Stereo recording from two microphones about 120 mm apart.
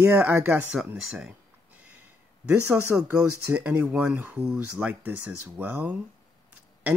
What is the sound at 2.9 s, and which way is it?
Speech, 10° right (ahead or behind).